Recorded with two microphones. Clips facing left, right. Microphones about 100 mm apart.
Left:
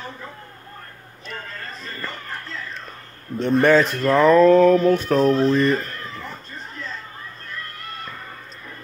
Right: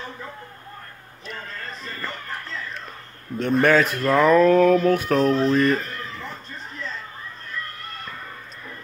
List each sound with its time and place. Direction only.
3.3 s speech: 5° right (ahead or behind)